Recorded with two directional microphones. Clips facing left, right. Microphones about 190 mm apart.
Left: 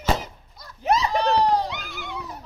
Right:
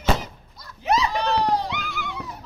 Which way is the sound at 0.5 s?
45° left (ahead or behind).